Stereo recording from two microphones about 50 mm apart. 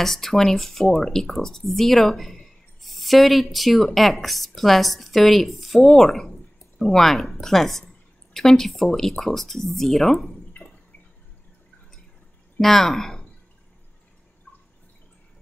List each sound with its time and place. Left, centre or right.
0.0 s speech: centre
10.6 s drip: left
12.5 s speech: centre